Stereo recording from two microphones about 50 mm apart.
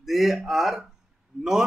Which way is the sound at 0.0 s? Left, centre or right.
Centre.